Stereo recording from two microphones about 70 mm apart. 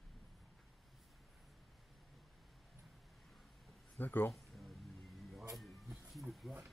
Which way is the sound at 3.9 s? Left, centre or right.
Left.